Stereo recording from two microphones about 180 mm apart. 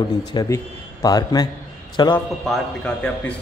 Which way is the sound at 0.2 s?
20° left (ahead or behind).